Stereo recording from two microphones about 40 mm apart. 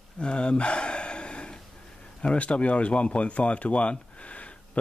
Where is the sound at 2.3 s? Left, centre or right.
Left.